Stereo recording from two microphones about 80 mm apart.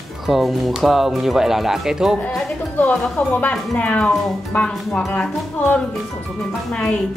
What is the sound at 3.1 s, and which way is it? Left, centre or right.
A woman's voice, centre.